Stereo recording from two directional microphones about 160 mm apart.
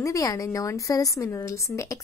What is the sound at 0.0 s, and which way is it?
A woman's voice, 20° left (ahead or behind).